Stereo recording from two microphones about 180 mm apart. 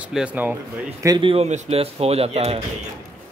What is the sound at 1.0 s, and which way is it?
Speech, 25° right (ahead or behind).